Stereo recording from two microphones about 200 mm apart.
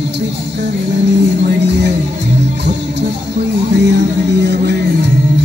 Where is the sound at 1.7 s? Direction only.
60° right (ahead or behind).